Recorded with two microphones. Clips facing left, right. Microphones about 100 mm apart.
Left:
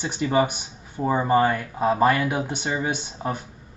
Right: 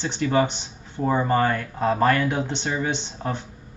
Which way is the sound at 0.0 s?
10° left (ahead or behind).